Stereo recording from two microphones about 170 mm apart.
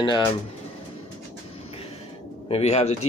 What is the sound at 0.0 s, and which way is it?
Speech, 25° left (ahead or behind).